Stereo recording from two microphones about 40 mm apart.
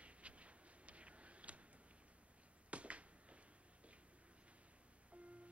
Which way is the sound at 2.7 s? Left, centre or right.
Right.